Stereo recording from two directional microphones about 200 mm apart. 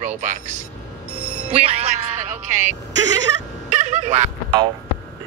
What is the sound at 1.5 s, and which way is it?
Speech, 30° right (ahead or behind).